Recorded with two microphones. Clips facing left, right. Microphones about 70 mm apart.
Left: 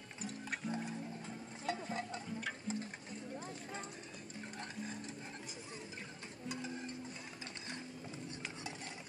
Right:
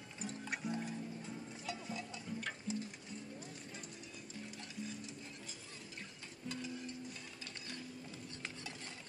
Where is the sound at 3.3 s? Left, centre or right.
Left.